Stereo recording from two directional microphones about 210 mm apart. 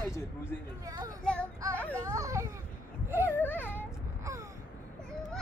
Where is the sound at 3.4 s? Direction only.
10° left (ahead or behind).